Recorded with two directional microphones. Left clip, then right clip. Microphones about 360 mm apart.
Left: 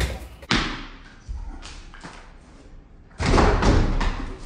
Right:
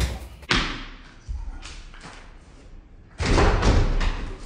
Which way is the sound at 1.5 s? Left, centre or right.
Right.